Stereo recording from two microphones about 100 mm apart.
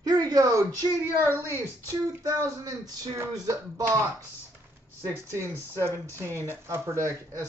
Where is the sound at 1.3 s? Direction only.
25° left (ahead or behind).